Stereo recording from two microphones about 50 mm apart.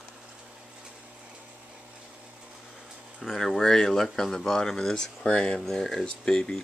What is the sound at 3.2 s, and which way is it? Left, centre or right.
Speech, centre.